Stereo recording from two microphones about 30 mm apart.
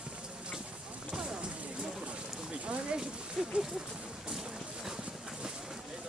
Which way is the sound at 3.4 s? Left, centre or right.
Centre.